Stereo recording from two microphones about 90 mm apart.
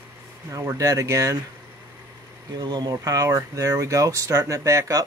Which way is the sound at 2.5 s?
55° right (ahead or behind).